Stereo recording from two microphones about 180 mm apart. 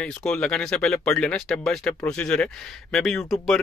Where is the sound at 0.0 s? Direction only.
5° left (ahead or behind).